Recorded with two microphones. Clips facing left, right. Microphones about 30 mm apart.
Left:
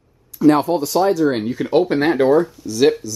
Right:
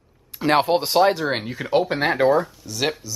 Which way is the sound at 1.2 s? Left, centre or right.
Right.